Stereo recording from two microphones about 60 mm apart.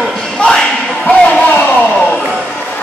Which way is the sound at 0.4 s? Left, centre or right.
Centre.